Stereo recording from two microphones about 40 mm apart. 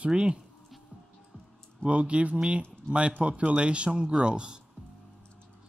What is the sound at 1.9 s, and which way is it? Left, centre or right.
Speech, right.